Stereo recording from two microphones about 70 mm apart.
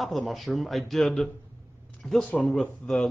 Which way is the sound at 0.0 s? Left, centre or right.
Centre.